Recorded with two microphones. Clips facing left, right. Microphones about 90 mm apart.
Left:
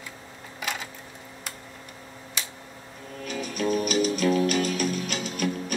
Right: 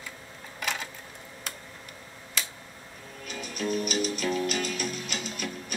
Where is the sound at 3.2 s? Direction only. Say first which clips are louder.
Left 5 dB; 50° left (ahead or behind).